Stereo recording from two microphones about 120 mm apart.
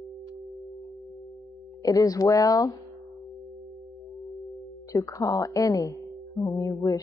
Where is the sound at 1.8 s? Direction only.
30° left (ahead or behind).